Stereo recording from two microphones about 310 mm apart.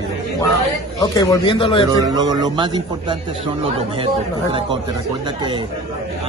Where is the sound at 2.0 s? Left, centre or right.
Centre.